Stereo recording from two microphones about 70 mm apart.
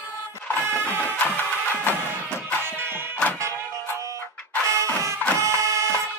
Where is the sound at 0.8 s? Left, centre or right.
Right.